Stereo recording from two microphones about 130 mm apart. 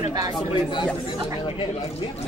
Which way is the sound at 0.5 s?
35° left (ahead or behind).